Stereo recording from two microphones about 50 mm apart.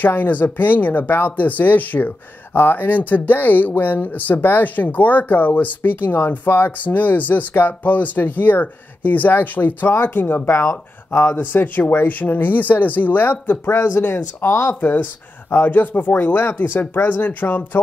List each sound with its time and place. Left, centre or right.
0.0 s speech: left
11.3 s speech: left